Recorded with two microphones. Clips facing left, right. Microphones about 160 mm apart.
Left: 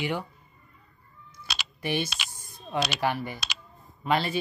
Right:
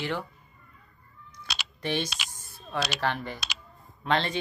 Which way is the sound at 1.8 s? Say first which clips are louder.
Left 1 dB; 10° left (ahead or behind).